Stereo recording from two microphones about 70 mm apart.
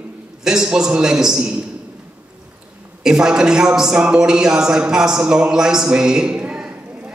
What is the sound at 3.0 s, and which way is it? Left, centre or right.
A woman's voice, centre.